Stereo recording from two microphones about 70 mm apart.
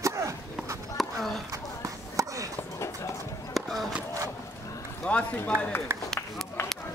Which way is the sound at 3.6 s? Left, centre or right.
Centre.